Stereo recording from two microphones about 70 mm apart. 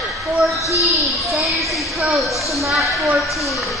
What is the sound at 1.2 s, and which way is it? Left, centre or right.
Speech, centre.